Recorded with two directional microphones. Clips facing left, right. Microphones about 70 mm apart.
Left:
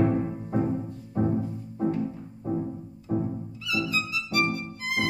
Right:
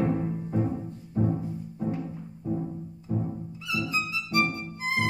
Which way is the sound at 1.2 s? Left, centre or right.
Left.